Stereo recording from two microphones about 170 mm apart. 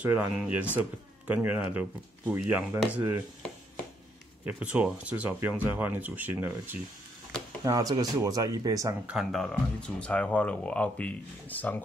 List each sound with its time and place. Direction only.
0.0 s speech: 10° right (ahead or behind)
4.7 s speech: 5° right (ahead or behind)
7.6 s speech: 20° right (ahead or behind)
9.0 s speech: 5° right (ahead or behind)